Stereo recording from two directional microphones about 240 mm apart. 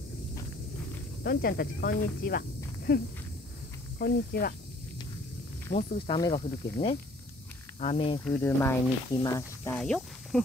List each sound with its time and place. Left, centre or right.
1.2 s speech: left
4.0 s speech: left
5.7 s speech: left
8.4 s speech: centre
9.8 s speech: centre